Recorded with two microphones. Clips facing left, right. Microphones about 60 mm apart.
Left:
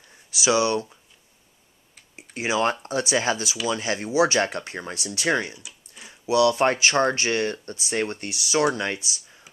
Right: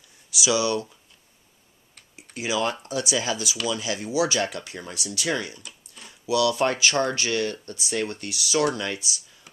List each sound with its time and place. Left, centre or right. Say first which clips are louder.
0.3 s speech: left 2 dB; left
2.3 s speech: left 3 dB; left
5.6 s a sound: even; centre
6.2 s speech: left 3 dB; left